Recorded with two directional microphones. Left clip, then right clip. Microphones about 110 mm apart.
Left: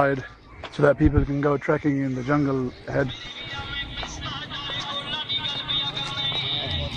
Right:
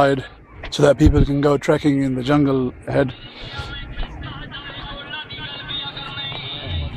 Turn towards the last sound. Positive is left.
turn(degrees=-20)  # may be behind; listen again after turning